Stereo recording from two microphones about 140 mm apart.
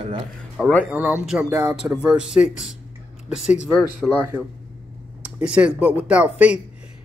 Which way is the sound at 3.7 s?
10° left (ahead or behind).